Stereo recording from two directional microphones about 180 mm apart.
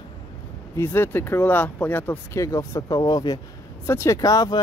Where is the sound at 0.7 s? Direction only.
15° left (ahead or behind).